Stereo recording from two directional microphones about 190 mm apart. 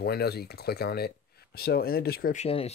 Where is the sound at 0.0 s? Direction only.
55° left (ahead or behind).